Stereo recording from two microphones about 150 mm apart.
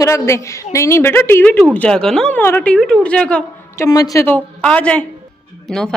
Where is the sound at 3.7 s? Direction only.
25° left (ahead or behind).